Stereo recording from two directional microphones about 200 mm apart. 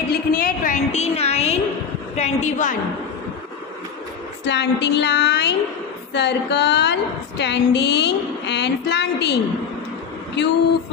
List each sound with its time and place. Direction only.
0.1 s a woman's voice: 45° left (ahead or behind)
4.5 s a woman's voice: 60° left (ahead or behind)